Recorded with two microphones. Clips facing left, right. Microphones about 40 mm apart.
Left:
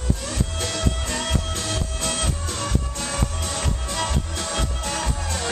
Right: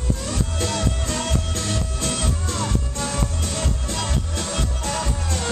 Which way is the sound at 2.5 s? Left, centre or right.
Right.